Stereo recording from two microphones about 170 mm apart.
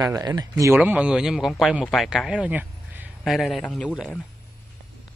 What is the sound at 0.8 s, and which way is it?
A man's voice, 10° right (ahead or behind).